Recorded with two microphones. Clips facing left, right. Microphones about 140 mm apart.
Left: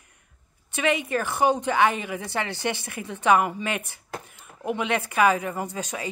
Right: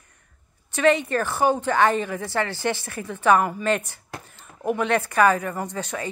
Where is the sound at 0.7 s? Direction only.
15° left (ahead or behind).